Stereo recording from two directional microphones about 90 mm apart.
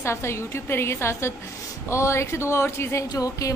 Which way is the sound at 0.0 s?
30° left (ahead or behind).